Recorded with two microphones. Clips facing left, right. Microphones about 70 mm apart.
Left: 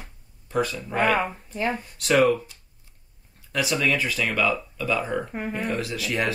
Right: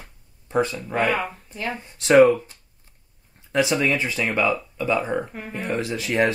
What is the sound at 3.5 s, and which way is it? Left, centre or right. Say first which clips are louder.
Speech: right 3 dB; right.